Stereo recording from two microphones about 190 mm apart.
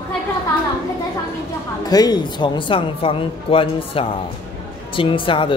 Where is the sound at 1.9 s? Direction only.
20° left (ahead or behind).